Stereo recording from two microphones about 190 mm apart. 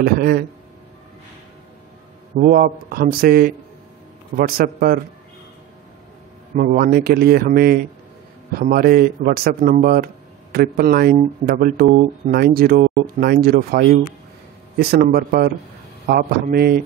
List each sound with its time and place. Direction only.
0.0 s a man's voice: 55° right (ahead or behind)
2.4 s a man's voice: 50° right (ahead or behind)
6.5 s a man's voice: 50° right (ahead or behind)